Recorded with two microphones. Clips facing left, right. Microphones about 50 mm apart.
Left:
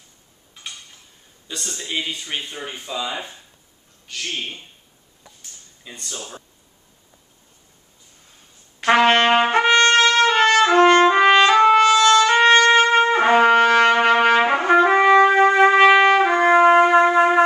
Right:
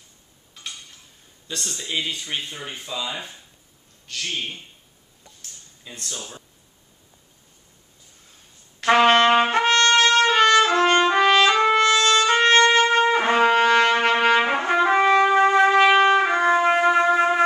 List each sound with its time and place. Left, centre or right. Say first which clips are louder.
1.5 s speech: left 1 dB; centre
4.1 s a man's voice: left 1 dB; centre
5.9 s speech: even; centre
8.8 s trumpet: left 1 dB; centre
9.3 s trumpet: left 1 dB; centre
9.6 s trumpet: left 3 dB; left
9.9 s trumpet: left 1 dB; centre
16.6 s shofar: left 5 dB; left